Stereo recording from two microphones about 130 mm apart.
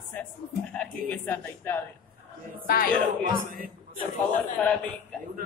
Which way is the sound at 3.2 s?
90° right.